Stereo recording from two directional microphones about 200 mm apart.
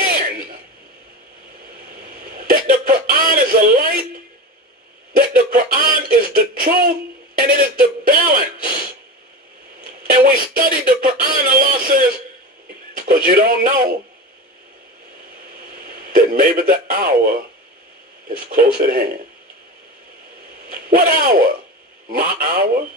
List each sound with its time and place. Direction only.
0.0 s a sound: 45° right (ahead or behind)
2.0 s hiccup: 45° right (ahead or behind)
2.7 s speech: 45° right (ahead or behind)
8.1 s a sound: 45° right (ahead or behind)
9.8 s music: 45° right (ahead or behind)
12.9 s speech: 45° right (ahead or behind)
15.8 s speech: 45° right (ahead or behind)
18.5 s speech: 45° right (ahead or behind)
20.6 s speech: 45° right (ahead or behind)